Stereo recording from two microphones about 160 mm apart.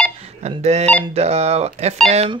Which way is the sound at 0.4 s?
45° right (ahead or behind).